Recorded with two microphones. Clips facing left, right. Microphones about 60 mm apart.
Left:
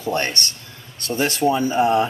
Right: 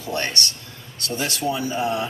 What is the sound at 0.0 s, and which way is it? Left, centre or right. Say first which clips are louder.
Speech: left 3 dB; left.